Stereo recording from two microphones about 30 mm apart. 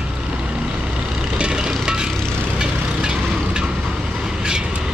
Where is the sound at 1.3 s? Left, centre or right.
Right.